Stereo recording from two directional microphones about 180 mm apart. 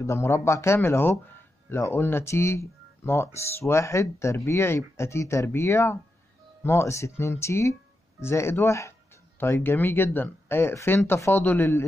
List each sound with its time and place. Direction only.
0.0 s speech: 15° left (ahead or behind)